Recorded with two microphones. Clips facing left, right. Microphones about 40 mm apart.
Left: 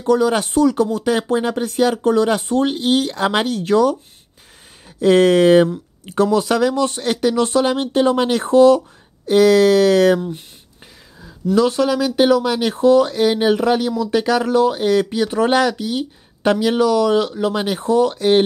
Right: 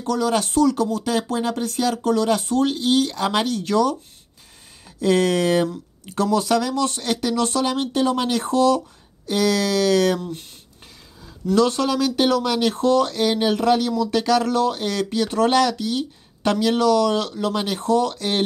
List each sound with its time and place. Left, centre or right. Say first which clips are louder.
0.0 s speech: left 5 dB; left
5.0 s speech: left 7 dB; left
11.2 s speech: left 2 dB; centre